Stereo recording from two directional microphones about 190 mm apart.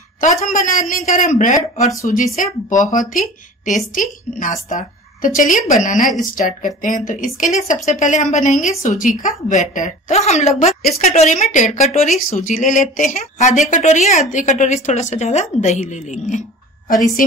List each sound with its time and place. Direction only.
0.2 s speech: 45° left (ahead or behind)